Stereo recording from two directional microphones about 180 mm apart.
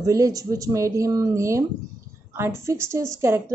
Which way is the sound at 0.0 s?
20° right (ahead or behind).